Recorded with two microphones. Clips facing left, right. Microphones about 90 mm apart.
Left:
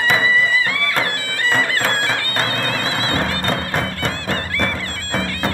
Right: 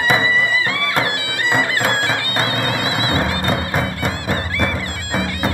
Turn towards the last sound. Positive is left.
turn(degrees=-10)  # may be behind; listen again after turning